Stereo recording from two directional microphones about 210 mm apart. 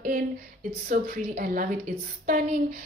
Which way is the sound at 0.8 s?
40° right (ahead or behind).